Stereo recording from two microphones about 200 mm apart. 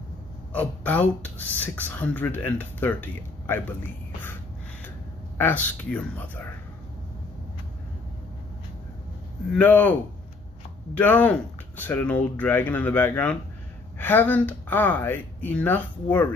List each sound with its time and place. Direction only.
0.5 s speech: 10° left (ahead or behind)
5.4 s speech: 10° left (ahead or behind)
9.5 s speech: 10° left (ahead or behind)
11.0 s speech: 5° left (ahead or behind)